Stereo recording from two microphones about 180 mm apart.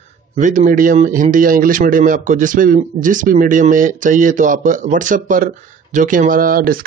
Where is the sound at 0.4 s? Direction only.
45° right (ahead or behind).